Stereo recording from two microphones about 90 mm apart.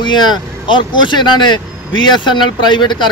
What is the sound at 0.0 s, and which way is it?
Speech, 55° left (ahead or behind).